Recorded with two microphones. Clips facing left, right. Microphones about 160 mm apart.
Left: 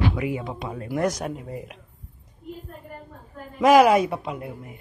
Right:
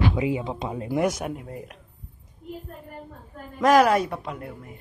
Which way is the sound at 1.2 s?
5° right (ahead or behind).